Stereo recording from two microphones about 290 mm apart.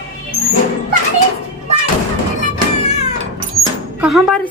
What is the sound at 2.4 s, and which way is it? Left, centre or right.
Music, left.